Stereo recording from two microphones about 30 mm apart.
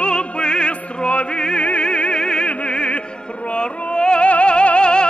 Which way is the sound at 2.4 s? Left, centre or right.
Left.